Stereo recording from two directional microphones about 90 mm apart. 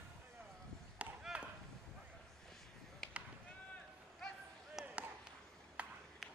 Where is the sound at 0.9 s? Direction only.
10° right (ahead or behind).